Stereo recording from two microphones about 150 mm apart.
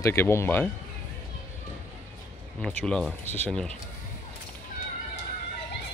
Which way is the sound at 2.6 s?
5° left (ahead or behind).